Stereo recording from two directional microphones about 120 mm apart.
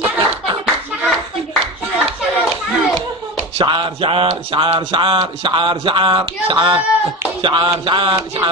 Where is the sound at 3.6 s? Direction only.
40° right (ahead or behind).